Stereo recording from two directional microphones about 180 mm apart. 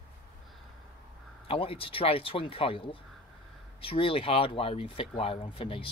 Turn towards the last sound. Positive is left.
turn(degrees=30)  # may be behind; listen again after turning